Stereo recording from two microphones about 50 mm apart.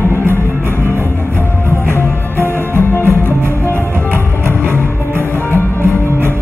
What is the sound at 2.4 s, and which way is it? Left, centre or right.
Music, left.